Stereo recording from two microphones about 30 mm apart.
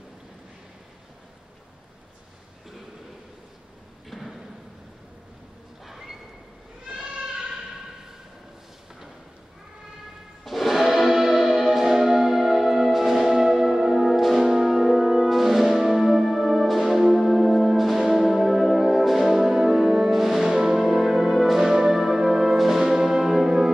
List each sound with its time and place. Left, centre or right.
4.1 s a sound: centre
5.9 s a sound: centre
10.4 s music: centre
16.8 s music: centre
18.0 s brass instrument: centre
20.9 s music: centre